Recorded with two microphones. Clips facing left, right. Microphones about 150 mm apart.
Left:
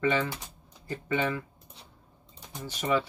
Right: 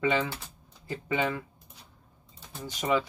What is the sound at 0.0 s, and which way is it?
Speech, 15° right (ahead or behind).